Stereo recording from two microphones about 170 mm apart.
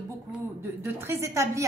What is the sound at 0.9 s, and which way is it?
Speech, 15° right (ahead or behind).